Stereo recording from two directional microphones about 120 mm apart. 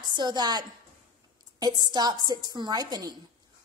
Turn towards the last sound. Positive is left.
turn(degrees=-35)  # may be behind; listen again after turning